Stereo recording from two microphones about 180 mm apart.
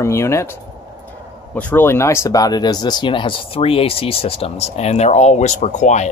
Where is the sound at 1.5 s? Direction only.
10° left (ahead or behind).